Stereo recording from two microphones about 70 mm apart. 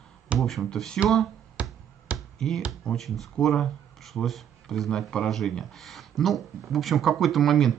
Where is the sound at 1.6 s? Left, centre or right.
Centre.